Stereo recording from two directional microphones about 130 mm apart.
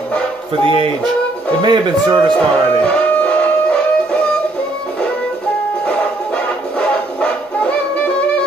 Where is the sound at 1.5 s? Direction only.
35° right (ahead or behind).